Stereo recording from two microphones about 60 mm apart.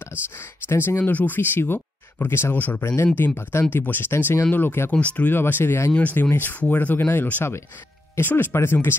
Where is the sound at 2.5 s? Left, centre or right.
Left.